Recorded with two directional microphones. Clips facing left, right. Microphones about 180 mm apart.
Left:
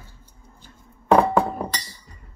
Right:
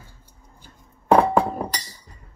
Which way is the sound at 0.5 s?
15° right (ahead or behind).